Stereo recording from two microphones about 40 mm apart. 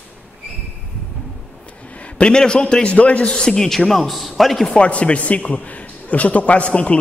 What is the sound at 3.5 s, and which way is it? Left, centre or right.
A man's voice, centre.